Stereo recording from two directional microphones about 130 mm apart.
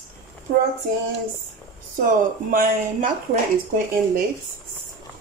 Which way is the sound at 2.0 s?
90° right.